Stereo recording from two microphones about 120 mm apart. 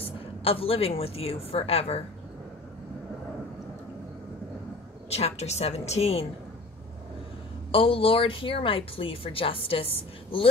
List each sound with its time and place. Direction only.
0.0 s a woman's voice: 50° left (ahead or behind)
5.1 s a woman's voice: 60° left (ahead or behind)
7.7 s speech: 50° left (ahead or behind)